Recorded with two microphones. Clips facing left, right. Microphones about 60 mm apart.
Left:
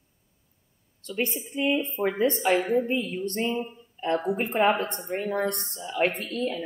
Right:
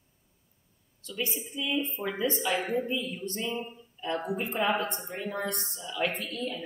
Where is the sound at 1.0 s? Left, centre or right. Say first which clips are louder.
Left 5 dB; left.